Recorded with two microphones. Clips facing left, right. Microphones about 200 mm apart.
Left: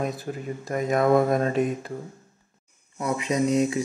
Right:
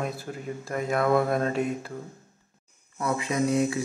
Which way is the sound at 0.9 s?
20° left (ahead or behind).